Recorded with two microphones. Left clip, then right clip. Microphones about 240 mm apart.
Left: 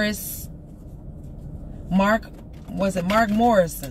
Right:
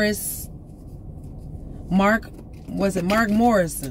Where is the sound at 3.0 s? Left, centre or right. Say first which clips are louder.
Left 1 dB; centre.